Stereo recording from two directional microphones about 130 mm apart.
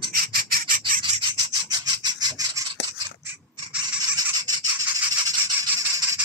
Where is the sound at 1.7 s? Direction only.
35° right (ahead or behind).